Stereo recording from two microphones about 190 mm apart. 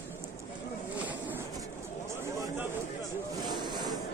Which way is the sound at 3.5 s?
20° right (ahead or behind).